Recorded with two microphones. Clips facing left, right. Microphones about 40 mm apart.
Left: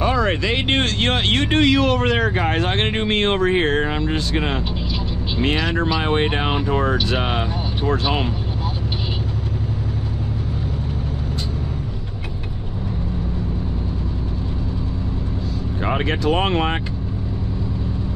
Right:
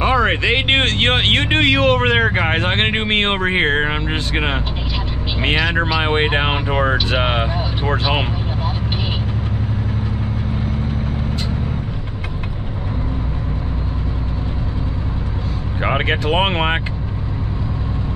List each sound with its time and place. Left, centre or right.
0.0 s speech: right
15.8 s speech: right